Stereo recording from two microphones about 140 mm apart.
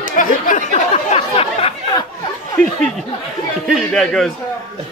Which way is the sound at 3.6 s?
Centre (ahead or behind).